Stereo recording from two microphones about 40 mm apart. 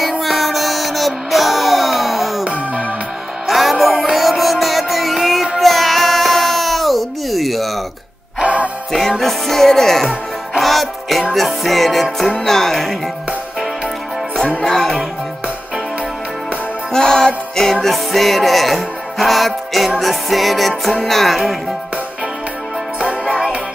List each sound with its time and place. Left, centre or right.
0.2 s music: centre
2.4 s music: right
3.4 s music: centre
5.6 s child singing: centre
8.4 s music: right
9.2 s music: centre
14.6 s music: centre
16.9 s music: centre
17.8 s music: centre
22.9 s music: right